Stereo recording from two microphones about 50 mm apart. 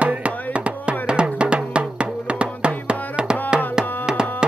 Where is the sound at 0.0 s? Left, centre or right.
Right.